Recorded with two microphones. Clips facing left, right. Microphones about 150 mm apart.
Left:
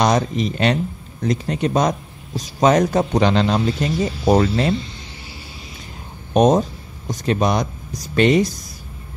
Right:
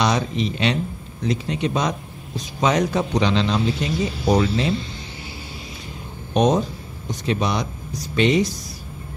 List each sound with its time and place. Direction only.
0.0 s speech: 45° left (ahead or behind)
6.3 s speech: 45° left (ahead or behind)